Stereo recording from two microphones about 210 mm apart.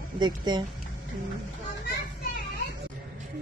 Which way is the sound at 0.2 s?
20° right (ahead or behind).